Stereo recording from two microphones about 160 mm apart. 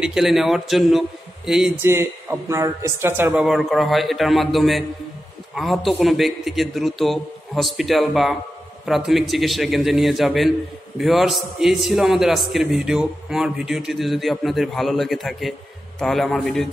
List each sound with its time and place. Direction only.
0.0 s a man's voice: centre (ahead or behind)
1.8 s speech: 15° right (ahead or behind)
3.3 s a man's voice: centre (ahead or behind)